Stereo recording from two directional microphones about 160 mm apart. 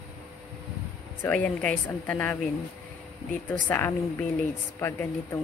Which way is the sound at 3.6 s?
10° left (ahead or behind).